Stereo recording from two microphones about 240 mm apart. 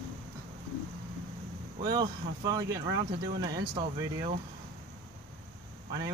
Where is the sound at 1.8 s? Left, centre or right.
Centre.